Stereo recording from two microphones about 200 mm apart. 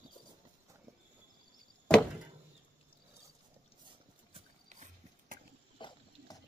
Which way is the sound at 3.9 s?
30° right (ahead or behind).